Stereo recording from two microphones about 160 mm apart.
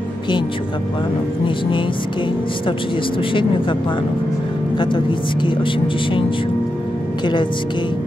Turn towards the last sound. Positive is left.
turn(degrees=30)  # may be behind; listen again after turning